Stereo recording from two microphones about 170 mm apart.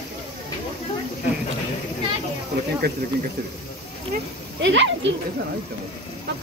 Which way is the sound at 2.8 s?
70° right (ahead or behind).